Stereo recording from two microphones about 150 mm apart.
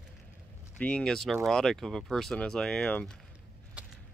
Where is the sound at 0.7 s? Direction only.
10° left (ahead or behind).